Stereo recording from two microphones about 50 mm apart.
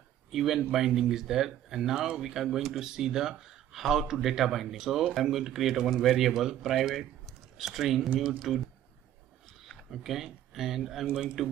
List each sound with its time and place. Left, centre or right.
0.3 s speech: centre
9.7 s speech: centre
11.1 s speech: right